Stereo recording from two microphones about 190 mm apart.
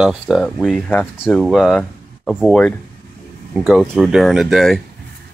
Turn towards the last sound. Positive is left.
turn(degrees=0)  # may be behind; listen again after turning